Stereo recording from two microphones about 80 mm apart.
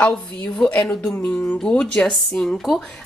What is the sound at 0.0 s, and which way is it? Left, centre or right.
Speech, centre.